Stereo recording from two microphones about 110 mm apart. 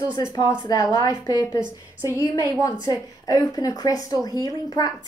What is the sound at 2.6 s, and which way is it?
A woman's voice, 35° left (ahead or behind).